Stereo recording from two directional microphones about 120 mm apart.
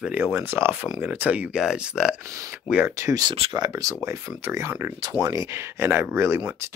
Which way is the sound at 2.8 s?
25° right (ahead or behind).